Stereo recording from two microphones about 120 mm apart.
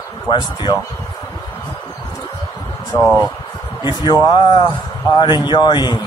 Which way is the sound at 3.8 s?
35° left (ahead or behind).